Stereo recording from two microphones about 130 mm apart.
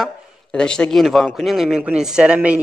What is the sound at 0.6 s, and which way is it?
A man's voice, 5° left (ahead or behind).